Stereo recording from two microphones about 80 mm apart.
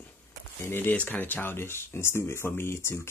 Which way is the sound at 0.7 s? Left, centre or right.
Left.